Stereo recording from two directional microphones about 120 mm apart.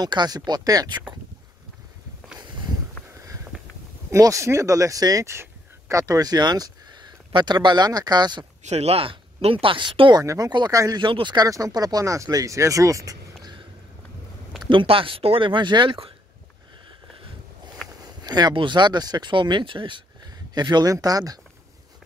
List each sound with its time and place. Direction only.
0.0 s speech: 35° right (ahead or behind)
4.1 s speech: 25° right (ahead or behind)
8.6 s speech: 60° right (ahead or behind); by 10.2 s 40° right (ahead or behind)
10.2 s speech: 30° right (ahead or behind)
11.0 s speech: 45° right (ahead or behind)
14.7 s speech: 45° right (ahead or behind)
18.2 s a sound: 35° right (ahead or behind)
18.5 s speech: 40° right (ahead or behind)